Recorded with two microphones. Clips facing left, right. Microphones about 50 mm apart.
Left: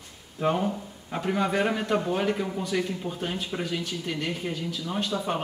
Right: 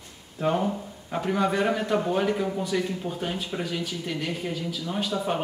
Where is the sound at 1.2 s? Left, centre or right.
Centre.